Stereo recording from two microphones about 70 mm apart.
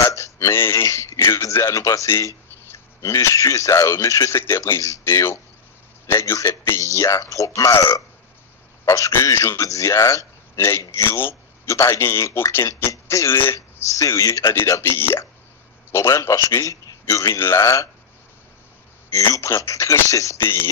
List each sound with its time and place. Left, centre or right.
0.0 s a sound: left
2.0 s speech: left
5.0 s a man's voice: left
8.8 s a man's voice: left
10.6 s a man's voice: left
14.7 s a man's voice: left
19.1 s speech: left
20.3 s a man's voice: left